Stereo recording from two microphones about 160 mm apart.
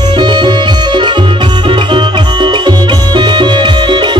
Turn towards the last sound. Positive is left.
turn(degrees=-30)  # may be behind; listen again after turning